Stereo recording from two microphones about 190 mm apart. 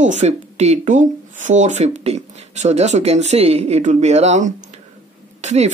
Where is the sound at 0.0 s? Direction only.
40° right (ahead or behind).